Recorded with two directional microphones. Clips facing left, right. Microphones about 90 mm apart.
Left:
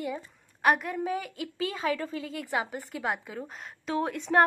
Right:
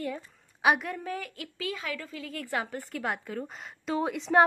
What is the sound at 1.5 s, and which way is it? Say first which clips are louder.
Speech: left 5 dB; 30° left (ahead or behind).